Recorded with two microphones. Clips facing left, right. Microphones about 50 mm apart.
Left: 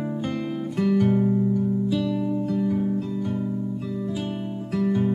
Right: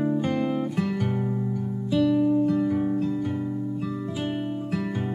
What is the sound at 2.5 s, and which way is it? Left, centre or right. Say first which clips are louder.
Guitar: right 1 dB; centre.